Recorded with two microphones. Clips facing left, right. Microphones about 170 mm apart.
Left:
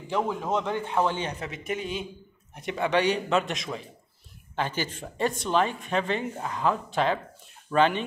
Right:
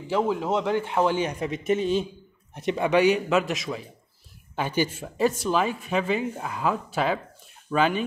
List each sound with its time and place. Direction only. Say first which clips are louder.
0.1 s speech: right 3 dB; 10° right (ahead or behind)
3.3 s a man's voice: right 2 dB; 5° right (ahead or behind)